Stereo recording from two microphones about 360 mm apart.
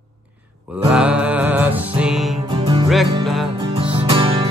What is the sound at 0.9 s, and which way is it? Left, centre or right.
Music, centre.